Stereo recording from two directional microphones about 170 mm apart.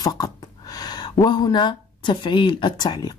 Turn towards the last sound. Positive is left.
turn(degrees=25)  # may be behind; listen again after turning